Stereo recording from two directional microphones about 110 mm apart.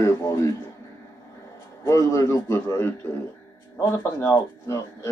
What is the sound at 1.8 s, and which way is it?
Speech, 30° left (ahead or behind).